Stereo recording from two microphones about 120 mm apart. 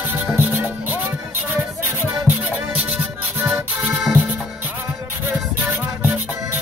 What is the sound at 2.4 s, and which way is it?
Music, 10° right (ahead or behind).